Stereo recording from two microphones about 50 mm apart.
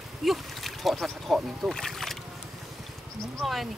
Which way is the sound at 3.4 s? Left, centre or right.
Centre.